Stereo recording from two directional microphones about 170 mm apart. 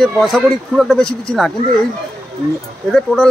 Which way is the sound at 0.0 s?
Centre (ahead or behind).